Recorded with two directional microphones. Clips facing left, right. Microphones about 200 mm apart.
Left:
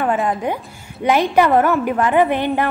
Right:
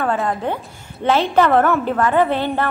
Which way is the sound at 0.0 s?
15° left (ahead or behind).